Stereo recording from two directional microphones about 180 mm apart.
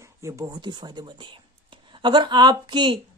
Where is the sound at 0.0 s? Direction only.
15° right (ahead or behind).